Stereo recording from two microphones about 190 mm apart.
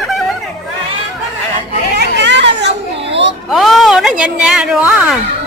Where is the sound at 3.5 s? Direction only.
Centre (ahead or behind).